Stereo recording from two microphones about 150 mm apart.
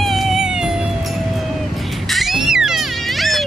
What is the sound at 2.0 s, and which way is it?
Music, centre (ahead or behind).